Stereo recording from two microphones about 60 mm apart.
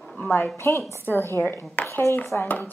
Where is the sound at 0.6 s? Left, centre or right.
Left.